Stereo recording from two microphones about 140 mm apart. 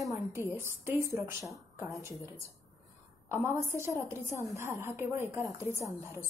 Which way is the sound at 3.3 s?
20° right (ahead or behind).